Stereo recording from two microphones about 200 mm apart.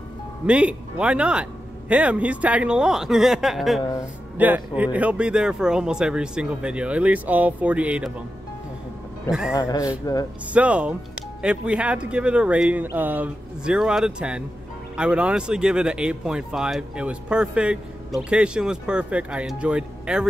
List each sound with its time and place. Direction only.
0.5 s speech: 5° right (ahead or behind)
9.3 s speech: 5° right (ahead or behind)
9.6 s speech: 20° left (ahead or behind)
10.5 s speech: 5° right (ahead or behind)